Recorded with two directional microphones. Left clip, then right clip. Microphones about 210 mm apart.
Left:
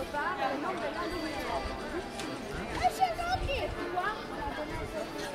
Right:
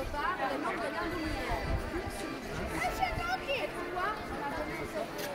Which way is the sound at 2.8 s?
40° left (ahead or behind).